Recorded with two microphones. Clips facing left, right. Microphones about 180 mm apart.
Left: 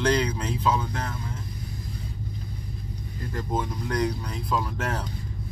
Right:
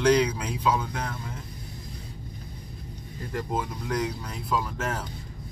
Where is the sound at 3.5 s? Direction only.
5° right (ahead or behind).